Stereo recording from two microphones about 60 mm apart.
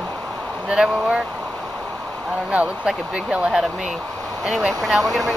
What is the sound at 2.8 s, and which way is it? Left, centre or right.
Speech, centre.